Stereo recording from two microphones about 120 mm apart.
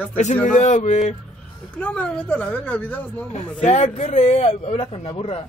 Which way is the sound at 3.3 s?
65° left (ahead or behind).